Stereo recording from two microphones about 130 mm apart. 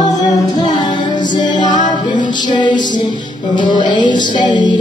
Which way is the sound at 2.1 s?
35° left (ahead or behind).